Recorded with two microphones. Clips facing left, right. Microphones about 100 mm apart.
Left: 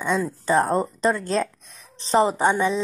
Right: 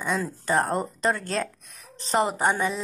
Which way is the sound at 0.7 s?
20° left (ahead or behind).